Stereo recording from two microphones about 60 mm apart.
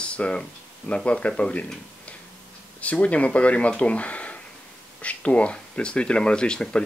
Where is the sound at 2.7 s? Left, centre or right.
Left.